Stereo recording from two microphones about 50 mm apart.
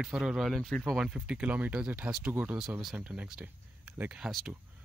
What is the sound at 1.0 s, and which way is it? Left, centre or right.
Speech, centre.